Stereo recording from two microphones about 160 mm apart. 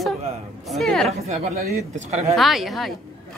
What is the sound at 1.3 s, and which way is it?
A woman's voice, 45° right (ahead or behind).